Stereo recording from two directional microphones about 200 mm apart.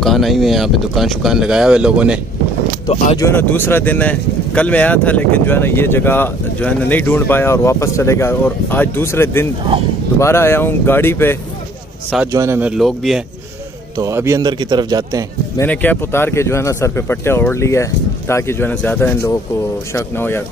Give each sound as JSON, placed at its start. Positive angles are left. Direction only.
{"t": 0.0, "sound": "speech", "side_deg": 0}
{"t": 2.9, "sound": "speech", "side_deg": 35}
{"t": 3.2, "sound": "speech", "side_deg": 10}
{"t": 9.7, "sound": "speech", "side_deg": -25}
{"t": 10.1, "sound": "speech", "side_deg": 15}
{"t": 12.3, "sound": "speech", "side_deg": -15}
{"t": 13.9, "sound": "speech", "side_deg": -15}
{"t": 15.5, "sound": "speech", "side_deg": 10}